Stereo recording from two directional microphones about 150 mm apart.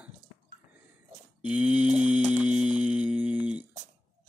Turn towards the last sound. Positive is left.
turn(degrees=-10)  # may be behind; listen again after turning